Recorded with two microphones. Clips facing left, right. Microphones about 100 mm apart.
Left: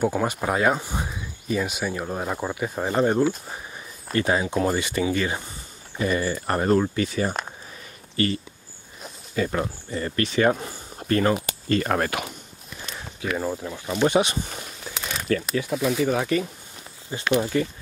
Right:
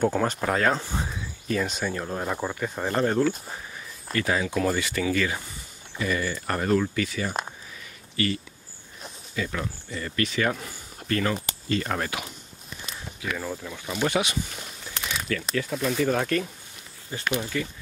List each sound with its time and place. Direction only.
0.0 s speech: 10° left (ahead or behind)
3.1 s speech: 15° left (ahead or behind)
4.1 s speech: 30° left (ahead or behind)
11.7 s speech: 50° left (ahead or behind)
13.4 s speech: 20° left (ahead or behind)
15.7 s speech: 5° left (ahead or behind)
17.3 s speech: 30° left (ahead or behind)